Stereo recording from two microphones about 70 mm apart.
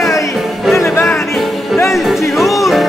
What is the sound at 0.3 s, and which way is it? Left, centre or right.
Music, centre.